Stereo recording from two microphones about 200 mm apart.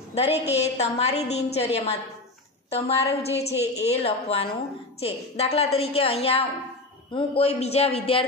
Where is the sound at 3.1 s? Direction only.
30° left (ahead or behind).